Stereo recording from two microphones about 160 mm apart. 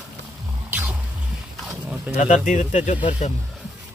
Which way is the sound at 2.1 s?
50° left (ahead or behind).